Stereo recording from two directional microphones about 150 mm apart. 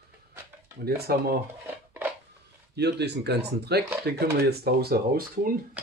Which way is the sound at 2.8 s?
90° right.